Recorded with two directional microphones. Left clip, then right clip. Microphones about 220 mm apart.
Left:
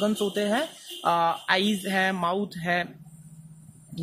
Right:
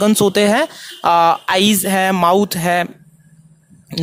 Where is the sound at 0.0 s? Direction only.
45° right (ahead or behind).